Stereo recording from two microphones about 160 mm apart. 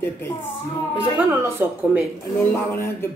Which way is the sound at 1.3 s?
15° right (ahead or behind).